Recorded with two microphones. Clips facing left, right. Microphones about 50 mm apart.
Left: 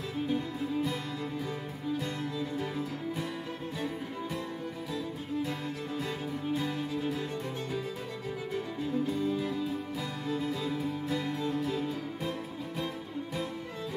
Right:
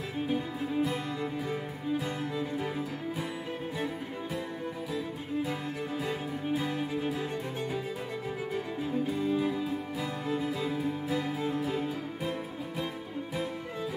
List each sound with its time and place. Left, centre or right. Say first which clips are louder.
0.3 s music: right 1 dB; right
6.5 s music: right 2 dB; centre
8.5 s music: left 1 dB; centre